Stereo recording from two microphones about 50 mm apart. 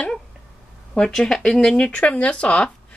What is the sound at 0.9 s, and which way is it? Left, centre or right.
Speech, centre.